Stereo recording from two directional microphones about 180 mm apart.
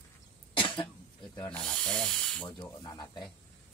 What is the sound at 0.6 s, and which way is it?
Cough, 25° left (ahead or behind).